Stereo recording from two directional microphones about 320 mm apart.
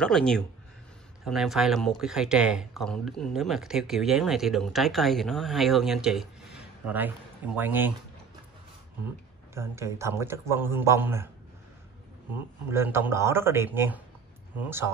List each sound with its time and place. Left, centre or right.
0.0 s speech: centre
7.5 s speech: centre
9.5 s a man's voice: centre
12.6 s a man's voice: centre